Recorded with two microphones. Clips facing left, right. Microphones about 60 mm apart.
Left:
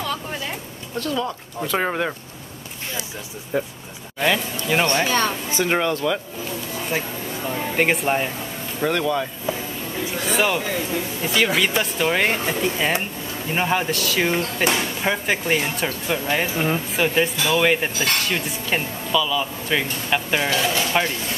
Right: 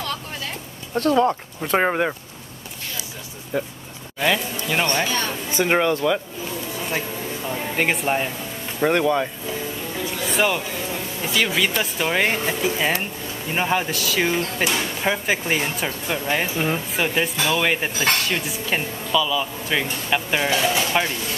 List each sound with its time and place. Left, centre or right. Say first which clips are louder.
0.0 s a sound: left 2 dB; centre
0.9 s speech: right 7 dB; right
1.8 s speech: right 3 dB; centre
3.5 s speech: left 1 dB; centre
5.0 s a woman's voice: left 4 dB; left
5.6 s speech: right 2 dB; centre
7.4 s speech: left 2 dB; centre
8.8 s speech: right 3 dB; centre
10.1 s a sound: even; centre
11.2 s speech: left 1 dB; centre
14.4 s speech: left 1 dB; left
14.8 s speech: even; centre